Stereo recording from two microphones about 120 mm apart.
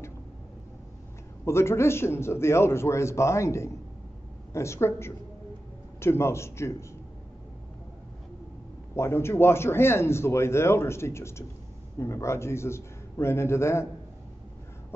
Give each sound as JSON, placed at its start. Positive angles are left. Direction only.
{"t": 1.4, "sound": "a man's voice", "side_deg": 20}
{"t": 8.9, "sound": "a man's voice", "side_deg": 20}